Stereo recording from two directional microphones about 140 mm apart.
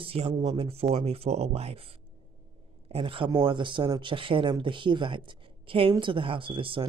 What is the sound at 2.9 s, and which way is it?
Speech, 40° right (ahead or behind).